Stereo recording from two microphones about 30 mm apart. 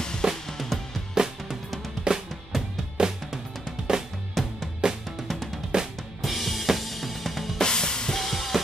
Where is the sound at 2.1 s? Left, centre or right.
Right.